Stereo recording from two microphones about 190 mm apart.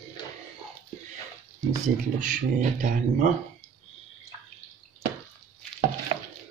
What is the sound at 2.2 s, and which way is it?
Speech, 45° right (ahead or behind).